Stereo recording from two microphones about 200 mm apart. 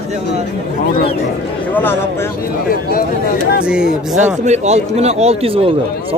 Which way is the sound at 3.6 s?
5° right (ahead or behind).